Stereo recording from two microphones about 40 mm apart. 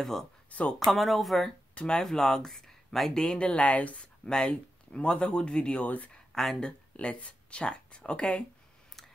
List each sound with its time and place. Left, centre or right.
0.0 s speech: centre
0.5 s speech: left
0.9 s speech: centre
1.8 s speech: left
2.0 s speech: centre
3.3 s speech: left
4.3 s speech: left
5.9 s speech: left
6.3 s speech: centre
6.6 s speech: left